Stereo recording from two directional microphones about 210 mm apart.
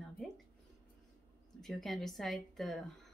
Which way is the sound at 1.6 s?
Centre (ahead or behind).